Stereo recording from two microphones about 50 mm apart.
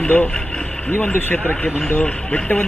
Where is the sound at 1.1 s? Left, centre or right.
Left.